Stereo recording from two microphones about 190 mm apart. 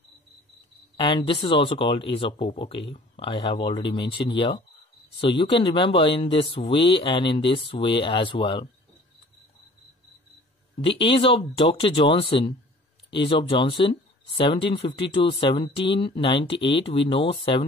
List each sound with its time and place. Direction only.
0.9 s speech: 25° left (ahead or behind)
10.8 s speech: 30° left (ahead or behind)